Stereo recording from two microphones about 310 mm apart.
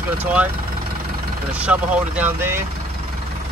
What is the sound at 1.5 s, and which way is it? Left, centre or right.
Speech, centre.